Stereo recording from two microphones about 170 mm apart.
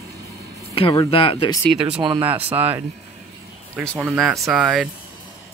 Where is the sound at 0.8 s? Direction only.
35° left (ahead or behind).